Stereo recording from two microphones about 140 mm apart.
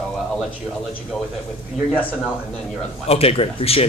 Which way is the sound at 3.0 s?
45° left (ahead or behind).